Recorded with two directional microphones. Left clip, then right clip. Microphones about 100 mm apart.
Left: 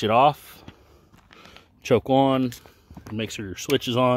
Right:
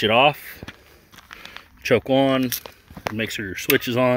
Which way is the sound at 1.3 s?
35° left (ahead or behind).